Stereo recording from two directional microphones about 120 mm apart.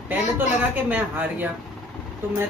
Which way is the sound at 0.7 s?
15° right (ahead or behind).